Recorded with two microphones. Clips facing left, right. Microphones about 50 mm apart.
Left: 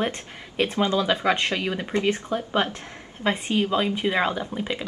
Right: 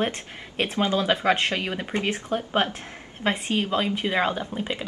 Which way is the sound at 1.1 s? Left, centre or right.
Centre.